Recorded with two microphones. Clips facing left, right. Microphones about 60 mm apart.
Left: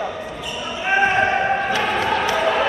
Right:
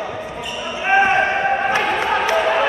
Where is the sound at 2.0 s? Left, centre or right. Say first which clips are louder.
Right 2 dB; right.